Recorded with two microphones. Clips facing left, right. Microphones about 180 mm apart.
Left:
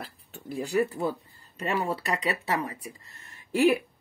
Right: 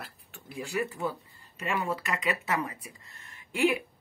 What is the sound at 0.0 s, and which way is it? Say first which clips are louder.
Speech: left 5 dB; 35° left (ahead or behind).